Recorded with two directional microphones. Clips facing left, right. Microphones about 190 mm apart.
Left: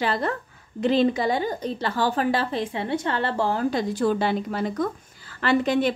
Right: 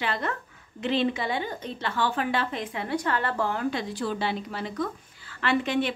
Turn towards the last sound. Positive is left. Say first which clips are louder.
# left 4 dB
turn(degrees=40)  # may be behind; listen again after turning